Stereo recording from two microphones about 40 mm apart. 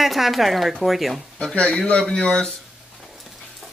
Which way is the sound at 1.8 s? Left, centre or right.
Left.